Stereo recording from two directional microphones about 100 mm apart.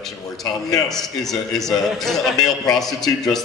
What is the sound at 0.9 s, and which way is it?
A man's voice, 5° left (ahead or behind).